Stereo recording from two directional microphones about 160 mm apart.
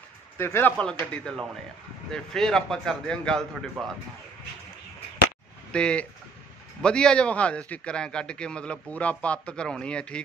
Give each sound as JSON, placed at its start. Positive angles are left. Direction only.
{"t": 0.4, "sound": "a man's voice", "side_deg": 15}
{"t": 5.7, "sound": "a man's voice", "side_deg": 5}